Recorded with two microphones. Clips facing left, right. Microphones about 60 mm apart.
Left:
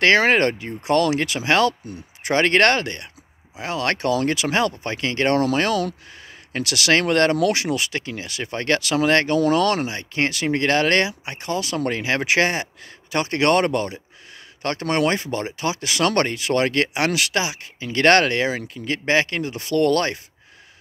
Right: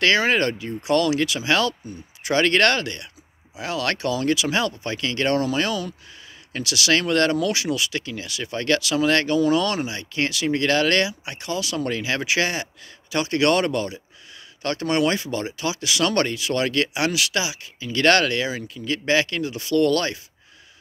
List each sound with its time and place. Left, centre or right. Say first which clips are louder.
0.0 s speech: left 3 dB; left
5.4 s speech: left 4 dB; left
6.5 s speech: left 2 dB; left
7.3 s speech: left 3 dB; left
9.4 s speech: left 2 dB; left